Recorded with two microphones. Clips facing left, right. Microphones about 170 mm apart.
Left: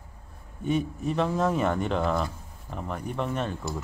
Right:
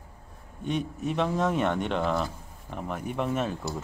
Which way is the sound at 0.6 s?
Centre (ahead or behind).